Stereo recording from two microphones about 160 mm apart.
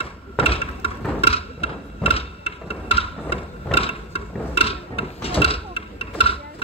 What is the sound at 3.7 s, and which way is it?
Mechanisms, 35° left (ahead or behind).